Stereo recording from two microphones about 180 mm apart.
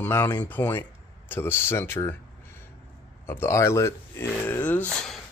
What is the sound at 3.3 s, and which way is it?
Speech, 15° left (ahead or behind).